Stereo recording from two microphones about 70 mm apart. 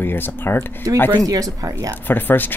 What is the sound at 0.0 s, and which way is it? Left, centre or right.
Speech, left.